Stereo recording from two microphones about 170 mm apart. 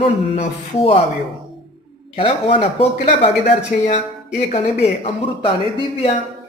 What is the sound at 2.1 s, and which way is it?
Speech, 30° left (ahead or behind).